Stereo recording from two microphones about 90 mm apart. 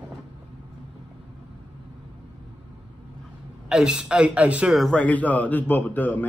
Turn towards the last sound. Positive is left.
turn(degrees=20)  # may be behind; listen again after turning